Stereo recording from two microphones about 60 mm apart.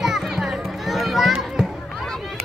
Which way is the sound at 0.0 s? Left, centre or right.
Centre.